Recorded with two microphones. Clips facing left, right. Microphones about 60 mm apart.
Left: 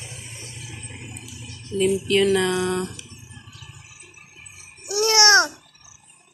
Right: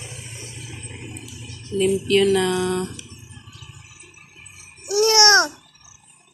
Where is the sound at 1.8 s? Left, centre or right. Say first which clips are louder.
Right 1 dB; centre.